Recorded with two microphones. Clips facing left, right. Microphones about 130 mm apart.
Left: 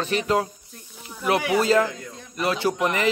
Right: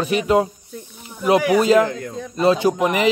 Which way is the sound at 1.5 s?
15° right (ahead or behind).